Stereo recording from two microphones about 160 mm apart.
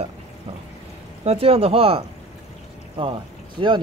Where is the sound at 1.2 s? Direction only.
40° right (ahead or behind).